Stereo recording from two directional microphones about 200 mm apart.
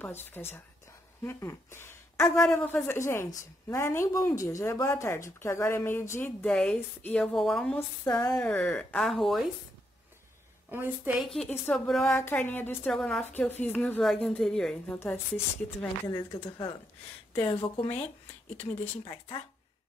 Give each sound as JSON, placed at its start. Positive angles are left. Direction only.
{"t": 0.3, "sound": "a woman's voice", "side_deg": 10}
{"t": 10.7, "sound": "a woman's voice", "side_deg": -10}
{"t": 11.3, "sound": "a woman's voice", "side_deg": 10}
{"t": 19.0, "sound": "speech", "side_deg": 20}